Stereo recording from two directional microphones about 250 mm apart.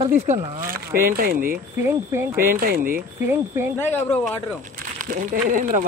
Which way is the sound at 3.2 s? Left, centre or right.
Centre.